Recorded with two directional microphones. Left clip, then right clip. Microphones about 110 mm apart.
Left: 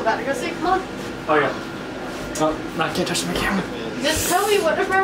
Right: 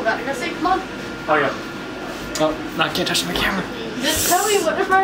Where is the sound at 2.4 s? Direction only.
30° right (ahead or behind).